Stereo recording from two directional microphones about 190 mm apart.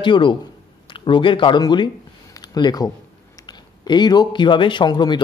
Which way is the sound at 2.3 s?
20° left (ahead or behind).